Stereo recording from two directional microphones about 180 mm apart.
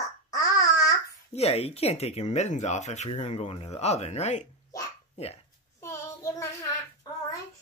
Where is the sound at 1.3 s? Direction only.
35° left (ahead or behind).